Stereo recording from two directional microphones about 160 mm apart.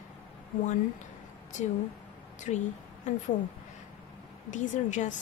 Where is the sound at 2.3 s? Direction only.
50° left (ahead or behind).